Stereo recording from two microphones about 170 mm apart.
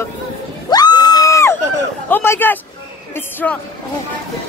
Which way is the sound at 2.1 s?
15° left (ahead or behind).